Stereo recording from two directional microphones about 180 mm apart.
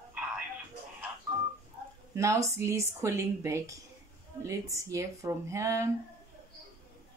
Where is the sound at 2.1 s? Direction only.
15° right (ahead or behind).